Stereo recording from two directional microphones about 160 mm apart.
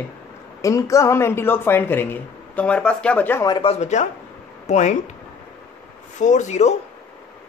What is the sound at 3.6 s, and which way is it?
Speech, 40° left (ahead or behind).